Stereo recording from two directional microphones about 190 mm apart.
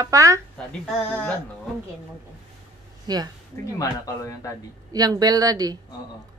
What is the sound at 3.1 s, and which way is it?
Speech, 20° right (ahead or behind).